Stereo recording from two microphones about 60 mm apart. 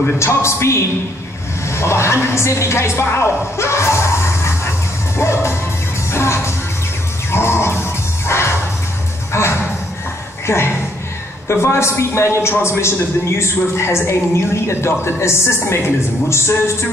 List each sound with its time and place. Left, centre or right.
0.0 s a man's voice: left
5.1 s music: left
10.4 s a man's voice: left